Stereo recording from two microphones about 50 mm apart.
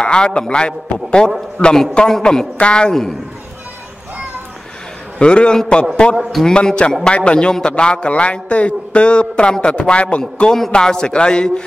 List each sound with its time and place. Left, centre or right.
0.0 s a man's voice: centre
2.5 s a man's voice: left
5.2 s a man's voice: centre